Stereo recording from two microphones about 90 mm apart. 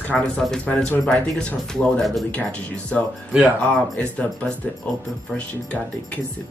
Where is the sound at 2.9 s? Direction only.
15° left (ahead or behind).